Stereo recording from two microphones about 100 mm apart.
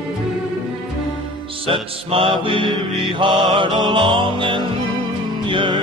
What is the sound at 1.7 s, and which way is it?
Mantra, 70° right (ahead or behind).